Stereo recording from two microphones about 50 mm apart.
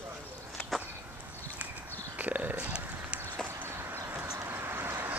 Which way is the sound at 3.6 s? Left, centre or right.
Right.